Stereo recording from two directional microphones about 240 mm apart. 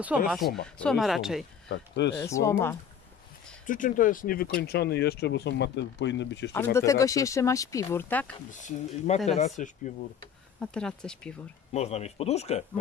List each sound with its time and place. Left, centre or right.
0.6 s speech: centre
1.7 s speech: left
2.1 s speech: centre
3.6 s speech: left
6.5 s speech: centre
8.5 s speech: left
10.6 s speech: centre
11.7 s speech: left